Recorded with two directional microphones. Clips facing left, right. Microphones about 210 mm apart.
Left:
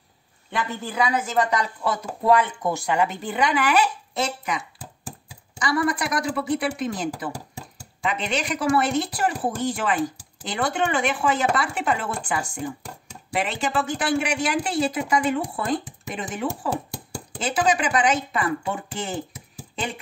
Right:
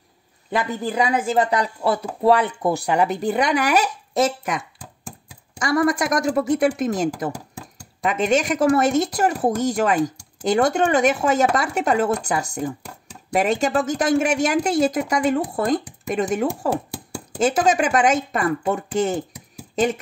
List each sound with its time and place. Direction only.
0.5 s chopping: 35° right (ahead or behind)
5.6 s a woman's voice: 45° right (ahead or behind)